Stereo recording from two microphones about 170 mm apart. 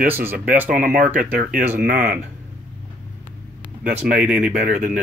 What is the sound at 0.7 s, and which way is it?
Speech, 55° right (ahead or behind).